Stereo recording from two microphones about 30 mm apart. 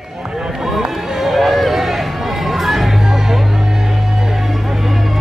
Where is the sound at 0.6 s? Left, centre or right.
Centre.